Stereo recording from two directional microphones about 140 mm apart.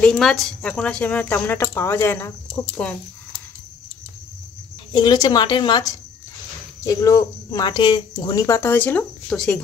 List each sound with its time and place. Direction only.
0.0 s speech: 5° left (ahead or behind)
2.7 s speech: 10° left (ahead or behind)
4.9 s speech: 30° left (ahead or behind); by 9.6 s 5° left (ahead or behind)